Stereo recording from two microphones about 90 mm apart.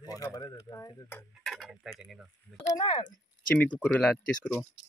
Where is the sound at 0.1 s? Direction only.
40° left (ahead or behind).